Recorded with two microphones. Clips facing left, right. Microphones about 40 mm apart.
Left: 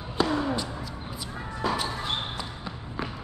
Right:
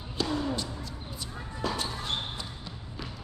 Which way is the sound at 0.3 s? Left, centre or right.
Left.